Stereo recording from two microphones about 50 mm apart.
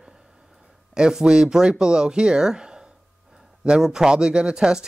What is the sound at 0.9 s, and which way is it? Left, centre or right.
Speech, centre.